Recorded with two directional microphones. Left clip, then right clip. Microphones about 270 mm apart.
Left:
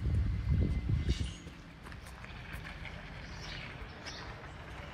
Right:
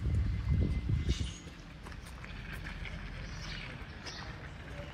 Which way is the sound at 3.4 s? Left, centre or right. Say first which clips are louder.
Even; left.